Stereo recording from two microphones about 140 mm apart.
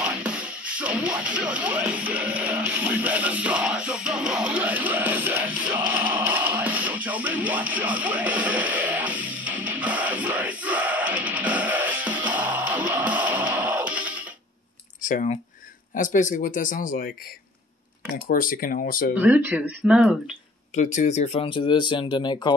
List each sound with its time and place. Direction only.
0.0 s speech: 5° right (ahead or behind)
13.6 s music: 10° right (ahead or behind)
15.0 s a sound: 65° left (ahead or behind)
15.9 s speech: 70° left (ahead or behind)
18.1 s speech: 80° left
19.1 s speech: 10° right (ahead or behind)
20.7 s speech: 60° left (ahead or behind)
21.4 s speech: 35° left (ahead or behind)